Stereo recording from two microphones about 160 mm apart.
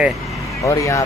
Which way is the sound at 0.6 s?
20° left (ahead or behind).